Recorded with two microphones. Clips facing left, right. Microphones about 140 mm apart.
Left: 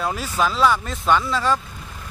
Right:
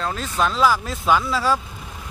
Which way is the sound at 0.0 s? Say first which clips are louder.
Even; 10° left (ahead or behind).